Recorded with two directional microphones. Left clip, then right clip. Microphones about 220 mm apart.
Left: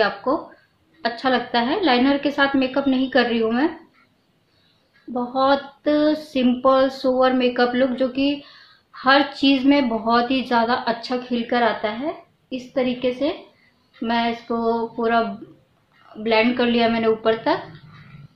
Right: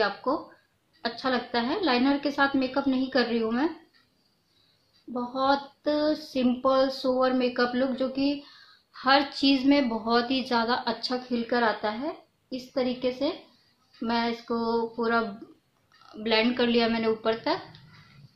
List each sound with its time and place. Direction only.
0.0 s speech: 10° right (ahead or behind)
5.1 s speech: 10° right (ahead or behind)
16.2 s speech: 10° right (ahead or behind)